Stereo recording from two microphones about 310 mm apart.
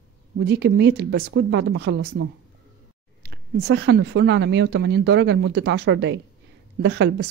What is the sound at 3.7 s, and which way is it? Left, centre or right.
A woman's voice, right.